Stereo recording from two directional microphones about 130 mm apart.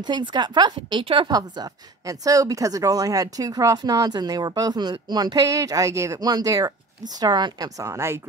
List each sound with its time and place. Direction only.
0.0 s a woman's voice: 35° right (ahead or behind)